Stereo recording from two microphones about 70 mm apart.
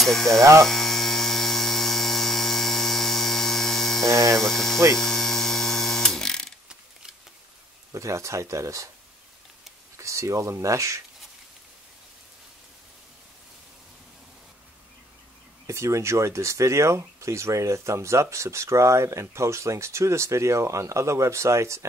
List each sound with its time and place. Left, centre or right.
0.0 s hum: centre
0.4 s speech: right
0.7 s hum: centre
4.0 s speech: right
4.4 s hum: centre
6.7 s a sound: centre
7.9 s speech: right
9.9 s speech: right
15.6 s speech: right